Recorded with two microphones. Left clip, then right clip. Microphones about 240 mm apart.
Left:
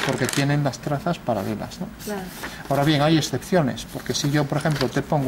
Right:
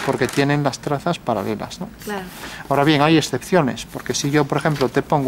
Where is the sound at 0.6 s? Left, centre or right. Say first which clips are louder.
Right 4 dB; centre.